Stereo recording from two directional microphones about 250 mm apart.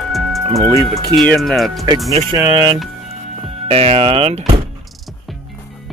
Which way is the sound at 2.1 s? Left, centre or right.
Right.